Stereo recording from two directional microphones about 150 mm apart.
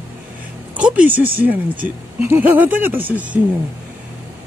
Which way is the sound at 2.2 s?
15° right (ahead or behind).